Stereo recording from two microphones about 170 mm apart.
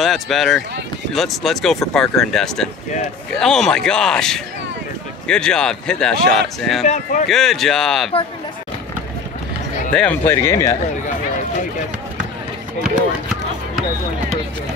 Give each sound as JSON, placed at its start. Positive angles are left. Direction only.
{"t": 0.0, "sound": "speech", "side_deg": 0}
{"t": 6.9, "sound": "speech", "side_deg": 50}
{"t": 7.2, "sound": "speech", "side_deg": 0}
{"t": 9.9, "sound": "speech", "side_deg": 10}